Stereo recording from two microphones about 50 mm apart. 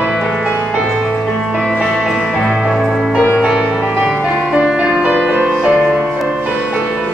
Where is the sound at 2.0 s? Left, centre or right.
Centre.